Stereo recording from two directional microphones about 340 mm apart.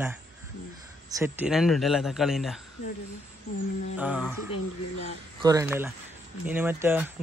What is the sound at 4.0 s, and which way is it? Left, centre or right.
A man's voice, centre.